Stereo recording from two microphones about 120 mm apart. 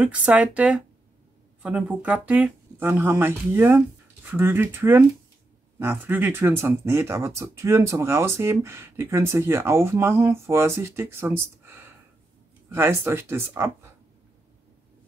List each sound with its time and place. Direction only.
0.0 s speech: 10° right (ahead or behind)